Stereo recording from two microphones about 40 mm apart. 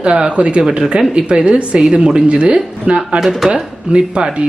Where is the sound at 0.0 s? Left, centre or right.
Right.